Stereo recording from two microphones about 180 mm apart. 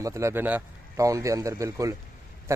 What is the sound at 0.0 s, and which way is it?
A man's voice, 15° right (ahead or behind).